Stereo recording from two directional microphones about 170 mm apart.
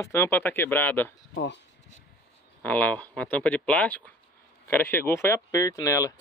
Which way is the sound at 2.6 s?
10° left (ahead or behind).